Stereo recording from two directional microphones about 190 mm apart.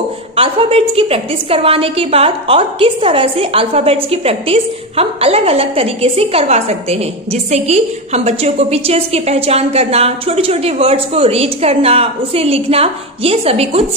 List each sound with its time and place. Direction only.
0.4 s a woman's voice: 30° right (ahead or behind)